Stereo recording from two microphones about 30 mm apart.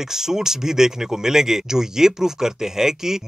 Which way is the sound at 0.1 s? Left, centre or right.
Centre.